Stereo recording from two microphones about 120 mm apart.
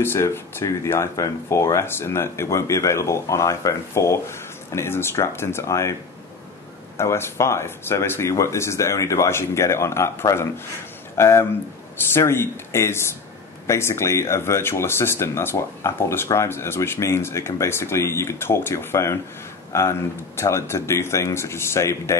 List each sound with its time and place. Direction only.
0.0 s speech: 20° left (ahead or behind)
7.0 s speech: 20° left (ahead or behind)